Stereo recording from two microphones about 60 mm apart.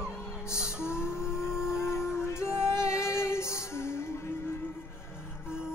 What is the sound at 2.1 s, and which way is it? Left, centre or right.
Music, left.